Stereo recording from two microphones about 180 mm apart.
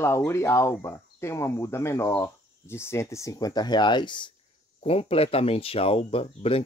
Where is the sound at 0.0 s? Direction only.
15° left (ahead or behind).